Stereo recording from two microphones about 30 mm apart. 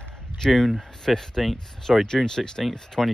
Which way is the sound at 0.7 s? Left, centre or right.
Centre.